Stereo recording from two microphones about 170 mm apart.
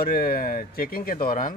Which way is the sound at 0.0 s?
60° left (ahead or behind).